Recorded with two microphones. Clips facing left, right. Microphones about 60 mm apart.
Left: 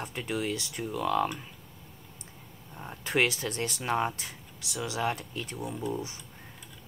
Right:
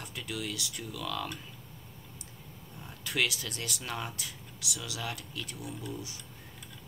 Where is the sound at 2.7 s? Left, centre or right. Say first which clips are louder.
Left 6 dB; left.